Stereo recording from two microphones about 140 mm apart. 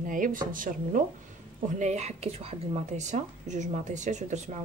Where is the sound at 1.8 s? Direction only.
55° right (ahead or behind).